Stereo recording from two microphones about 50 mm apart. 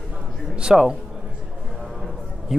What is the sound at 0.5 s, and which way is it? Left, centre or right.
Speech, centre.